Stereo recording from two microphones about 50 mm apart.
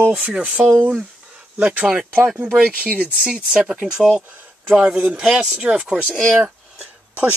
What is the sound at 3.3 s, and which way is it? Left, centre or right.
Speech, centre.